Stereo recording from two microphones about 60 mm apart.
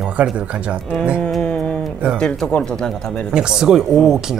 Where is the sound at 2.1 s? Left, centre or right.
Centre.